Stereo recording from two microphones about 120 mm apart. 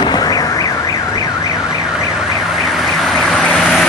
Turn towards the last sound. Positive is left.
turn(degrees=0)  # may be behind; listen again after turning